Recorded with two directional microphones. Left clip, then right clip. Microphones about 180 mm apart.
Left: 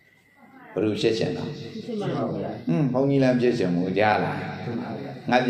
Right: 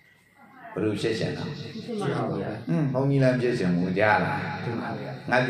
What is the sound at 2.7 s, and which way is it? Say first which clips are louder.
A man's voice: left 4 dB; 20° left (ahead or behind).